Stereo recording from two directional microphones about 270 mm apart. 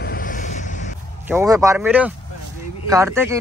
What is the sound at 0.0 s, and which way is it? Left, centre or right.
Vehicle, left.